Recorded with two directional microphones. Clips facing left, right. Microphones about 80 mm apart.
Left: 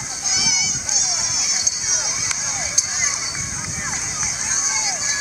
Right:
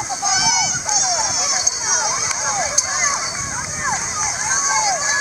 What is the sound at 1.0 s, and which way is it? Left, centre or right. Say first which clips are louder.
Honk: right 11 dB; right.